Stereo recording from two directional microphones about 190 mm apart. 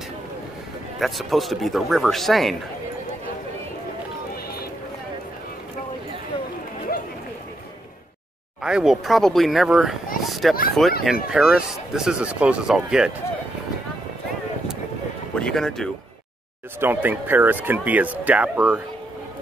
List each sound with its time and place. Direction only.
0.9 s speech: centre (ahead or behind)
6.9 s chatter: 55° left (ahead or behind)
8.6 s speech: 5° right (ahead or behind)
10.2 s a sound: centre (ahead or behind)
11.1 s speech: 5° right (ahead or behind)
15.3 s speech: 5° left (ahead or behind)
16.8 s speech: 10° right (ahead or behind)